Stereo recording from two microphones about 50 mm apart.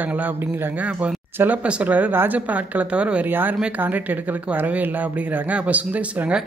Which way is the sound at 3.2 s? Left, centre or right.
Right.